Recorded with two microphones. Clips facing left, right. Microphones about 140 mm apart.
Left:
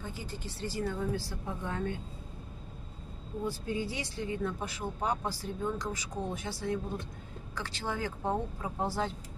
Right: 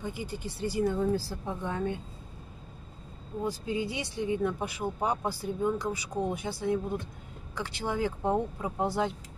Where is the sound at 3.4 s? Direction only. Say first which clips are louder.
Right 3 dB; 15° right (ahead or behind).